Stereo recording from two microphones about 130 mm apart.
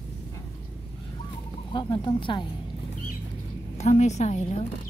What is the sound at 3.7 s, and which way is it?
Speech, 60° left (ahead or behind).